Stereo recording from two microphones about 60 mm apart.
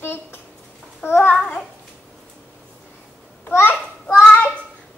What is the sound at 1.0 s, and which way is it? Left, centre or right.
Babbling, left.